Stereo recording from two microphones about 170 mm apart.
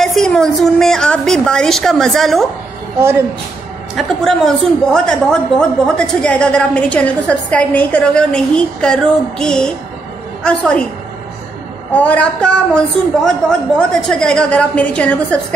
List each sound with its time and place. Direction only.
0.0 s a woman's voice: centre (ahead or behind)
3.0 s speech: 15° right (ahead or behind)
3.9 s a woman's voice: 5° left (ahead or behind)
11.9 s a woman's voice: 10° left (ahead or behind)